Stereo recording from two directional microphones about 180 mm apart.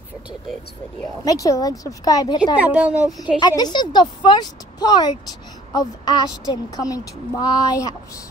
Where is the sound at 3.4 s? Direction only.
25° left (ahead or behind).